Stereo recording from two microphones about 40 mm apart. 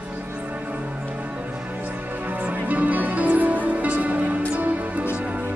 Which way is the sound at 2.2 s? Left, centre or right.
Right.